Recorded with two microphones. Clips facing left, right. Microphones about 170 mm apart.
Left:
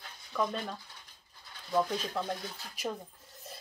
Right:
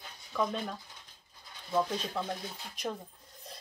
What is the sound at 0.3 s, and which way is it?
Speech, centre (ahead or behind).